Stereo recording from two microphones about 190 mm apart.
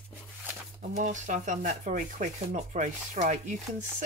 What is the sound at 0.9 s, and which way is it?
Speech, 40° right (ahead or behind).